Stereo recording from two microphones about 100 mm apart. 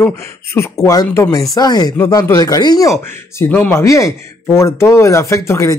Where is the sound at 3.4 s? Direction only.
20° left (ahead or behind).